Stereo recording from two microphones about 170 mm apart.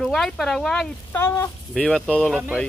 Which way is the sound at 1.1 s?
15° left (ahead or behind).